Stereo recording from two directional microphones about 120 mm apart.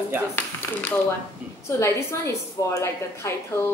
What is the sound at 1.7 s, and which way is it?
A woman's voice, 20° left (ahead or behind).